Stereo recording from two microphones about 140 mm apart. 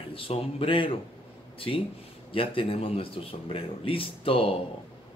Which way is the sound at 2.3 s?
40° left (ahead or behind).